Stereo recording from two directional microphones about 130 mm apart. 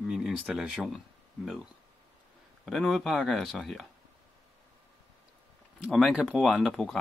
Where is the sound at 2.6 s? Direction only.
Centre (ahead or behind).